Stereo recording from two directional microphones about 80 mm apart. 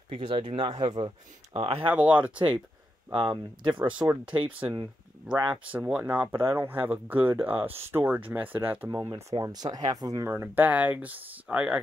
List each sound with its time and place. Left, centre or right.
0.1 s speech: right
1.9 s speech: centre
3.1 s speech: right
5.4 s speech: centre
6.3 s speech: right
9.1 s speech: right
10.2 s speech: right; by 11.8 s centre